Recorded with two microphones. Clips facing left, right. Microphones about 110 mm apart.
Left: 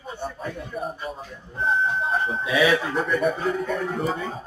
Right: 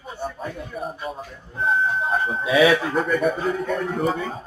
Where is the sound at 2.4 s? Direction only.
25° right (ahead or behind).